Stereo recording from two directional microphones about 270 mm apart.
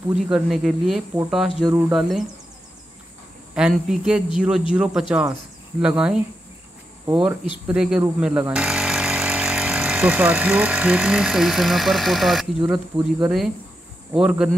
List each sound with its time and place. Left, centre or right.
0.1 s speech: centre
1.7 s speech: centre
2.0 s speech: centre
3.5 s speech: centre
14.1 s speech: centre